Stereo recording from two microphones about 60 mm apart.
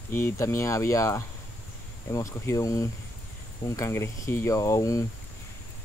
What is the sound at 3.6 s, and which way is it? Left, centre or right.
Speech, left.